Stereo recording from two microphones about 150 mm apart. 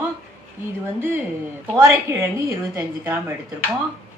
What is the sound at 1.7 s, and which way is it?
A woman's voice, 20° right (ahead or behind).